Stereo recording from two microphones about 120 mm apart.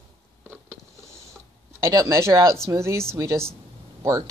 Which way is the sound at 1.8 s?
25° right (ahead or behind).